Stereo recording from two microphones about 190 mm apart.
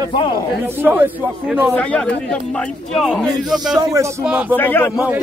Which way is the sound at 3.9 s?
15° right (ahead or behind).